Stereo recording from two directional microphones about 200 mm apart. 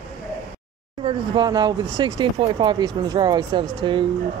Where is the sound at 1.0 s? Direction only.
25° right (ahead or behind).